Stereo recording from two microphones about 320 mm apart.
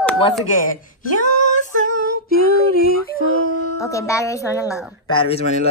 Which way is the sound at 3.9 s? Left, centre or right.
Centre.